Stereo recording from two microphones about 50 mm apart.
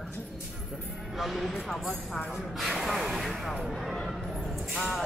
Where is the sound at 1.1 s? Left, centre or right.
Centre.